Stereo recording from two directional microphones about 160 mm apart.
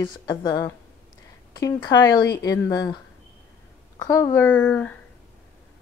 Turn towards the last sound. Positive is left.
turn(degrees=10)  # may be behind; listen again after turning